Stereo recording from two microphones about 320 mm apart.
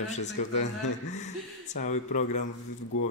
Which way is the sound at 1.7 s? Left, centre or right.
Left.